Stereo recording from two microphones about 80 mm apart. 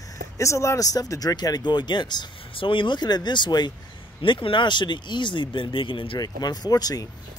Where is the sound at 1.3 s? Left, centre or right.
Left.